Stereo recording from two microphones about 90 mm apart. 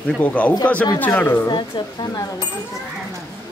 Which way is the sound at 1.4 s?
55° left (ahead or behind).